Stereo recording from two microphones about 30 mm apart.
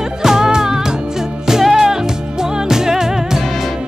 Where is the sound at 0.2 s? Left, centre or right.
Centre.